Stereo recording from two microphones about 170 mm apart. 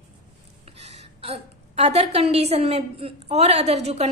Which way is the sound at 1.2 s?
35° right (ahead or behind).